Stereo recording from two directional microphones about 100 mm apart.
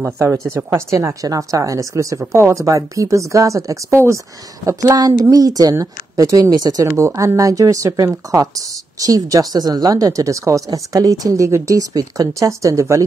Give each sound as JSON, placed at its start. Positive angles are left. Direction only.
{"t": 0.0, "sound": "speech", "side_deg": -25}